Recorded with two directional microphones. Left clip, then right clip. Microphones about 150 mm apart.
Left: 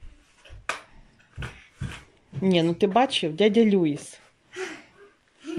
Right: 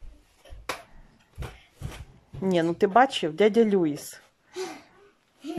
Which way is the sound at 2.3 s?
Centre (ahead or behind).